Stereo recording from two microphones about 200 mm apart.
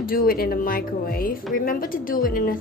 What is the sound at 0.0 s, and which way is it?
A woman's voice, 45° left (ahead or behind).